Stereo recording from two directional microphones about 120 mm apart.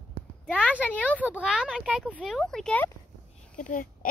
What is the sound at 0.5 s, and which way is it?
Speech, 10° left (ahead or behind).